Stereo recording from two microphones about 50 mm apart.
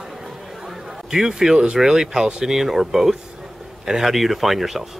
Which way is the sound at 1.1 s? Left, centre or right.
Centre.